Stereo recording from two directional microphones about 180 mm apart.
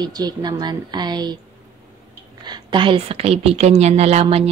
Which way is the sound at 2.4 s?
25° right (ahead or behind).